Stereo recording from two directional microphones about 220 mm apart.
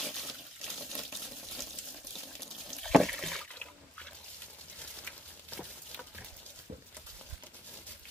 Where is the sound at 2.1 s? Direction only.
Centre (ahead or behind).